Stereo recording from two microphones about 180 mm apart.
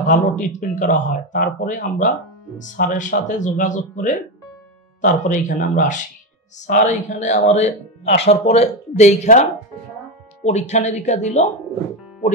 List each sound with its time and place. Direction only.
0.1 s speech: 45° left (ahead or behind)